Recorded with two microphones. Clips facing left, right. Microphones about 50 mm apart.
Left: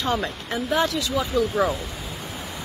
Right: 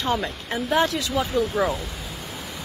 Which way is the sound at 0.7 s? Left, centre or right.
Right.